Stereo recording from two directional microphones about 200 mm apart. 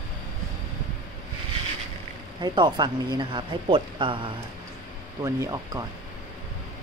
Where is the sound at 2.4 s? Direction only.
20° right (ahead or behind).